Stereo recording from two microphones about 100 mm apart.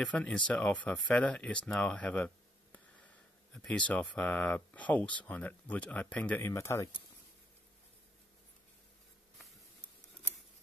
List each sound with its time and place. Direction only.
0.0 s speech: 10° left (ahead or behind)
6.4 s speech: 25° left (ahead or behind)